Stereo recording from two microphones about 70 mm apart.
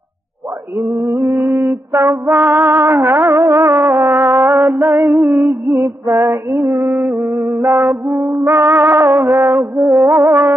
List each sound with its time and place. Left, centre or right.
0.7 s a sound: right
1.7 s music: right
2.3 s music: right
5.3 s a sound: centre
5.8 s female singing: right
6.9 s music: right